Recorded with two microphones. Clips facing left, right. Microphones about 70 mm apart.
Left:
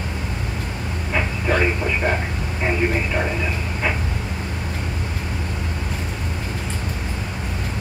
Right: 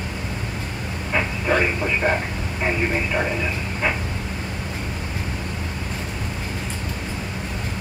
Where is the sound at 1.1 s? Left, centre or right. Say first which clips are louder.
Right 1 dB; centre.